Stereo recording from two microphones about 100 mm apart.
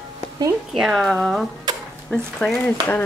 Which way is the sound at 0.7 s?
Centre (ahead or behind).